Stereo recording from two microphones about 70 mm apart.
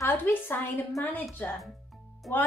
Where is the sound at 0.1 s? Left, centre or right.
Left.